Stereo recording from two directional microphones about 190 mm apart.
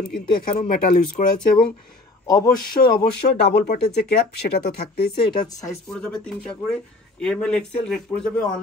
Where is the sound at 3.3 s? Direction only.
60° left (ahead or behind).